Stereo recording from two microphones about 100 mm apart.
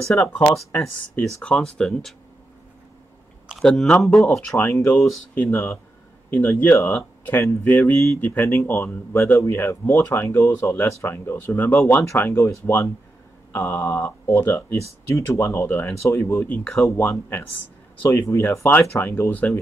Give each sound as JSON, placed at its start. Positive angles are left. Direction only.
{"t": 0.2, "sound": "speech", "side_deg": 15}
{"t": 0.7, "sound": "speech", "side_deg": 25}
{"t": 1.4, "sound": "speech", "side_deg": 10}
{"t": 3.6, "sound": "speech", "side_deg": 5}
{"t": 4.9, "sound": "speech", "side_deg": 15}
{"t": 16.5, "sound": "speech", "side_deg": 10}
{"t": 16.9, "sound": "speech", "side_deg": 25}